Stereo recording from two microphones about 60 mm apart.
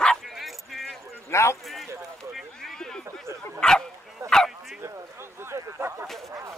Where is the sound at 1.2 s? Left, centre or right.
Left.